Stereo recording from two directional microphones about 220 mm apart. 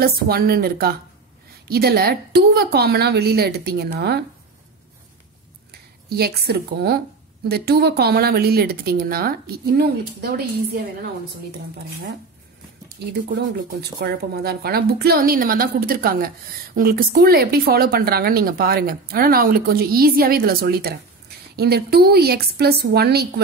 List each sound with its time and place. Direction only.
0.0 s speech: 45° right (ahead or behind)
5.7 s speech: 45° right (ahead or behind)
12.8 s speech: 45° right (ahead or behind)